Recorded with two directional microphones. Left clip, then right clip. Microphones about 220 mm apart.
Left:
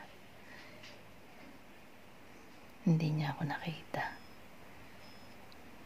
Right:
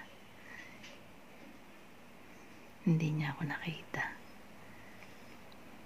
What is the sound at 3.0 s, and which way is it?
Speech, 20° left (ahead or behind).